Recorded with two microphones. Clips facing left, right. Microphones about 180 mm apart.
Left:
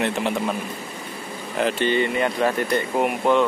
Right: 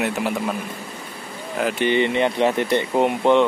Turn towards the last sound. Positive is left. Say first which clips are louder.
# right 3 dB
turn(degrees=-20)  # may be behind; listen again after turning